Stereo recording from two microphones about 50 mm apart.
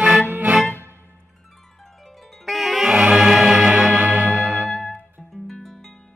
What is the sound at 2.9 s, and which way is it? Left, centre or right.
Music, right.